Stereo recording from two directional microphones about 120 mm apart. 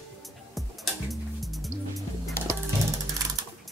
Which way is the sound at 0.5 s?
Centre (ahead or behind).